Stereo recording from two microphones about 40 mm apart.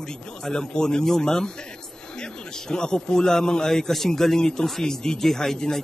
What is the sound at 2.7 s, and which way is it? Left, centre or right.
A man's voice, centre.